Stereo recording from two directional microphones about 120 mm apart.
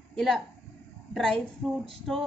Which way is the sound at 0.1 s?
5° left (ahead or behind).